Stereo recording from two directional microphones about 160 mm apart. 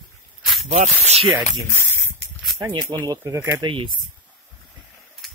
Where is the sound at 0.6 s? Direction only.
45° right (ahead or behind).